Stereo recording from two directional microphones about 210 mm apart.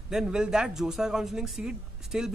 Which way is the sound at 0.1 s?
5° right (ahead or behind).